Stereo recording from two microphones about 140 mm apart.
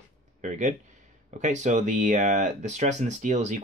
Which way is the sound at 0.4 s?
60° right (ahead or behind).